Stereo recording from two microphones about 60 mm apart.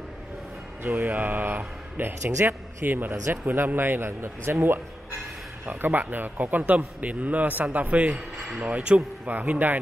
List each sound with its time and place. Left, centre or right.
0.8 s mantra: right
1.1 s speech: right
5.7 s a man's voice: right